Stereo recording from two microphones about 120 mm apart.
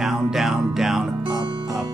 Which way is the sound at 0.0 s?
5° right (ahead or behind).